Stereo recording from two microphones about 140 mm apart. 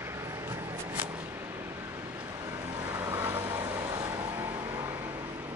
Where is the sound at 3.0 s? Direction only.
25° right (ahead or behind).